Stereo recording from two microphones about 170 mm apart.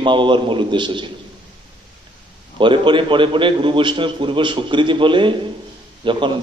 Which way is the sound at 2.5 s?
30° right (ahead or behind).